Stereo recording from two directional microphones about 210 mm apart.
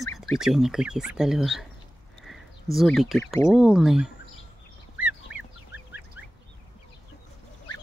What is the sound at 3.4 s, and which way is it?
Speech, centre (ahead or behind).